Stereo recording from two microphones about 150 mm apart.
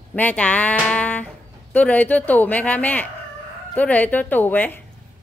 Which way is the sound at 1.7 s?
10° left (ahead or behind).